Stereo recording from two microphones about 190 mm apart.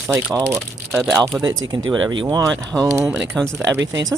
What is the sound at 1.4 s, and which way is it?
Speech, 90° right.